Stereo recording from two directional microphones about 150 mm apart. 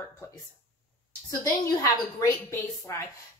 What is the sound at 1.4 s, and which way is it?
A woman's voice, 20° left (ahead or behind).